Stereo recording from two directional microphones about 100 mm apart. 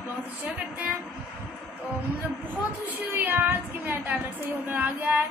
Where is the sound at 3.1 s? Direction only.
20° right (ahead or behind).